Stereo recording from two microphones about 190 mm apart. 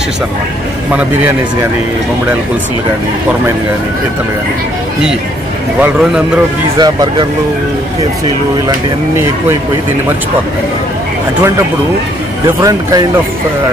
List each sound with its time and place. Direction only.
0.9 s speech: 10° right (ahead or behind)
5.8 s a man's voice: 5° right (ahead or behind)
6.8 s speech: 20° right (ahead or behind)
12.4 s speech: 20° right (ahead or behind)